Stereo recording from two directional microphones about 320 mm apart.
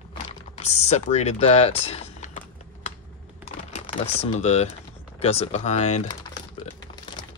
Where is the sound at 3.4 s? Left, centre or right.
Centre.